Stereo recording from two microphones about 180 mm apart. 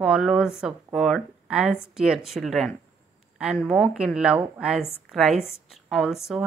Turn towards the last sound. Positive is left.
turn(degrees=0)  # may be behind; listen again after turning